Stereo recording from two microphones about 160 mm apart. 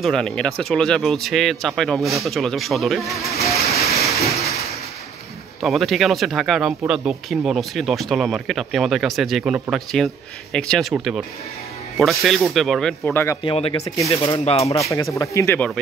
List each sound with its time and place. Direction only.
0.0 s speech: 5° left (ahead or behind)
3.6 s train: 40° left (ahead or behind)
4.4 s a sound: 40° left (ahead or behind)
5.6 s speech: centre (ahead or behind)
13.0 s speech: 15° left (ahead or behind)
13.4 s speech: 35° left (ahead or behind)
13.7 s speech: 20° left (ahead or behind)
14.4 s speech: 40° left (ahead or behind)
14.8 s speech: 20° left (ahead or behind)